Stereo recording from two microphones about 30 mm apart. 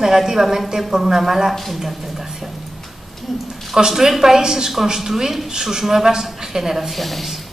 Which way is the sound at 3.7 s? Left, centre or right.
Centre.